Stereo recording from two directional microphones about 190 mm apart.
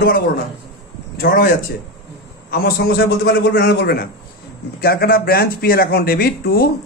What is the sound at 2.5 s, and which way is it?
A man's voice, 55° left (ahead or behind).